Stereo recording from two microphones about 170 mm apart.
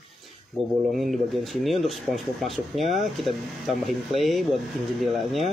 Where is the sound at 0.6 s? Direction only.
35° right (ahead or behind).